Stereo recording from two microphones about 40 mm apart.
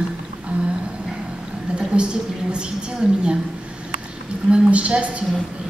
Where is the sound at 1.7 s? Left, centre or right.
Right.